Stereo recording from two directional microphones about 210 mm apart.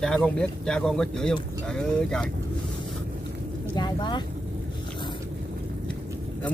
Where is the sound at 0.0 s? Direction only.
5° left (ahead or behind).